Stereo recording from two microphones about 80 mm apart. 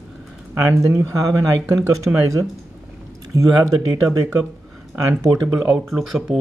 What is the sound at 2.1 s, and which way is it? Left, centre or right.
Speech, right.